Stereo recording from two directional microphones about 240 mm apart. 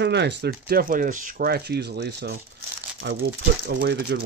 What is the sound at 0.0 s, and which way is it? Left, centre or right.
Speech, right.